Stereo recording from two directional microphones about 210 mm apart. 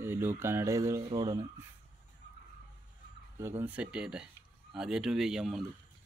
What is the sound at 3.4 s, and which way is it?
Speech, 10° right (ahead or behind).